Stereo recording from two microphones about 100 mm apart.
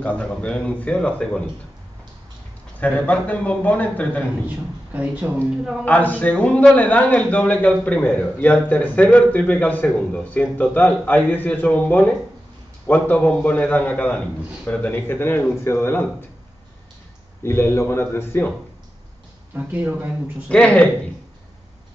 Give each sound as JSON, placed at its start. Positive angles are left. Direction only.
{"t": 0.0, "sound": "a man's voice", "side_deg": 10}
{"t": 2.8, "sound": "a man's voice", "side_deg": 15}
{"t": 4.5, "sound": "speech", "side_deg": -15}
{"t": 5.9, "sound": "a man's voice", "side_deg": 15}
{"t": 17.4, "sound": "a man's voice", "side_deg": 25}
{"t": 19.5, "sound": "speech", "side_deg": -15}
{"t": 20.4, "sound": "a man's voice", "side_deg": 10}